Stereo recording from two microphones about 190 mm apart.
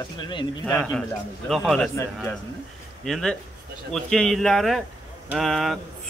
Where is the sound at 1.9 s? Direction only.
15° left (ahead or behind).